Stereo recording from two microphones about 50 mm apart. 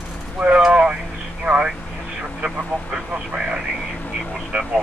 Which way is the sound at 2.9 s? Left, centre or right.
Right.